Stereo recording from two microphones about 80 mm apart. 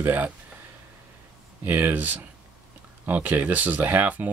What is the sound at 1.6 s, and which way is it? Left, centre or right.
Speech, right.